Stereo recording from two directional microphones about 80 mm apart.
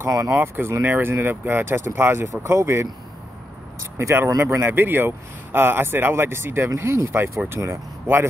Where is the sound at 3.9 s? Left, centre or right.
Right.